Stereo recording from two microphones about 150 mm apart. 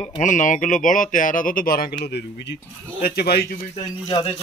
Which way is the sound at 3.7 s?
35° left (ahead or behind).